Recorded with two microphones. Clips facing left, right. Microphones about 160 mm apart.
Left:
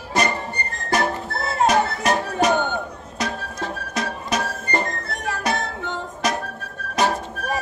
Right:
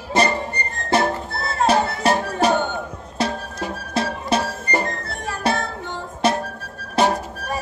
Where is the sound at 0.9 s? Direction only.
30° right (ahead or behind).